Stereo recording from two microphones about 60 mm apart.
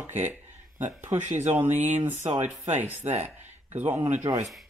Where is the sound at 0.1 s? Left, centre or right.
Right.